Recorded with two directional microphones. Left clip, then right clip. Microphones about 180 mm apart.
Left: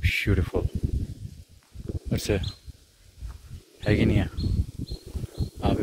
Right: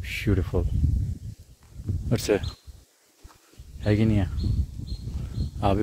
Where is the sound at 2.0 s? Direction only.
55° right (ahead or behind).